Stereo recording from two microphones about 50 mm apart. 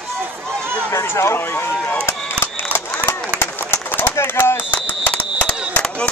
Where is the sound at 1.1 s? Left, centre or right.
Left.